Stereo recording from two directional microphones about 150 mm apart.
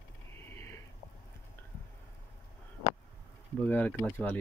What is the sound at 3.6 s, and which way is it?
Speech, 10° left (ahead or behind).